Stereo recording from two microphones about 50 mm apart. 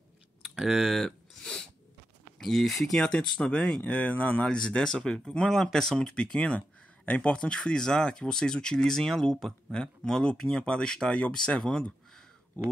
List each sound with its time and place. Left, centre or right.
0.4 s a sound: centre
1.4 s sneeze: centre
2.4 s speech: centre
3.0 s speech: centre
3.8 s speech: left
4.5 s speech: centre